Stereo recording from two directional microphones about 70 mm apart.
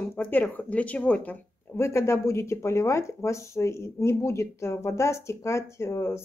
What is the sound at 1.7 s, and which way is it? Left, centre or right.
Speech, left.